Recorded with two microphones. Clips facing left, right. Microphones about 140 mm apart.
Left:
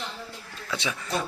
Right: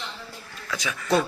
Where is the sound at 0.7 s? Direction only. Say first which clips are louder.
Even; 30° left (ahead or behind).